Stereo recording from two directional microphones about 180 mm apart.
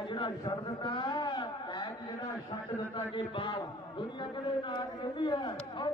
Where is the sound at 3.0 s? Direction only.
25° left (ahead or behind).